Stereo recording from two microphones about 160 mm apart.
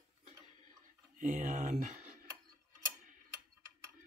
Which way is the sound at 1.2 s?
50° right (ahead or behind).